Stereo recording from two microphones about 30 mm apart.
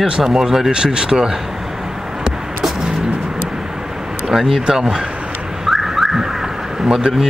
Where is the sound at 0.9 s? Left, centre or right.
Right.